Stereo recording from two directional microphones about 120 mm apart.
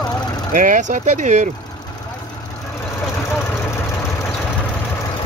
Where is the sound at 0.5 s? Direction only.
90° right.